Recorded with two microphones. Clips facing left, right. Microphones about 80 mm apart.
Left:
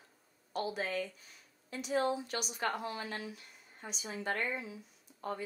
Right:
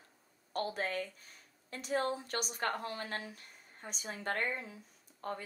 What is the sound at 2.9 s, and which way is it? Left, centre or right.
Speech, right.